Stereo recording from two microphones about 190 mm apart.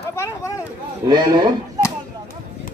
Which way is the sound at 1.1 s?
20° right (ahead or behind).